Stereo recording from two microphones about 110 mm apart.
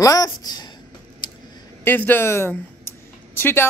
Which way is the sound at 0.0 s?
35° left (ahead or behind).